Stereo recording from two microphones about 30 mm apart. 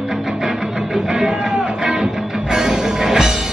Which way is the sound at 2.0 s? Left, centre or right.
Centre.